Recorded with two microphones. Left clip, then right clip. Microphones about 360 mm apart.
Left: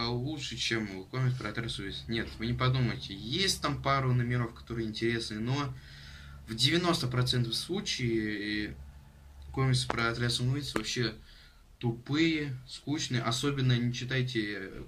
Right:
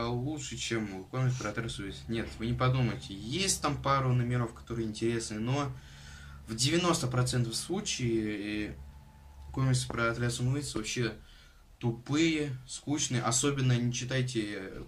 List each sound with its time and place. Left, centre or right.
0.0 s speech: centre